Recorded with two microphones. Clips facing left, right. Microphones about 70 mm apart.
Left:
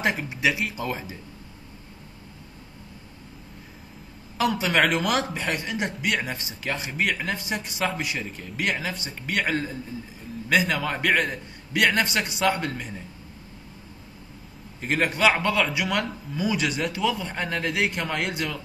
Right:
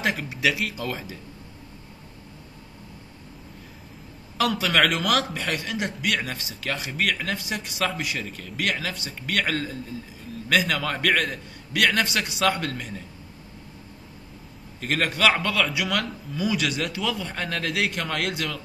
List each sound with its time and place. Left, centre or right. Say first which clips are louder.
0.0 s a man's voice: even; left
4.4 s a man's voice: even; left
14.8 s a man's voice: left 1 dB; centre